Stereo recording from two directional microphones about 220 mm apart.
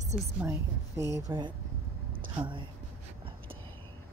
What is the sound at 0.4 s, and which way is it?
A woman's voice, 10° right (ahead or behind).